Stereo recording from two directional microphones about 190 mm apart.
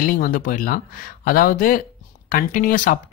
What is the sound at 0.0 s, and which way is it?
Speech, 45° left (ahead or behind).